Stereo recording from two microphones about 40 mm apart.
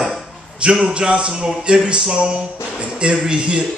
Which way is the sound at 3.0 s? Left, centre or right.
Right.